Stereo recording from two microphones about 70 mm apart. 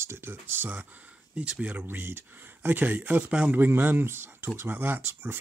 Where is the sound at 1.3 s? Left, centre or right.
Centre.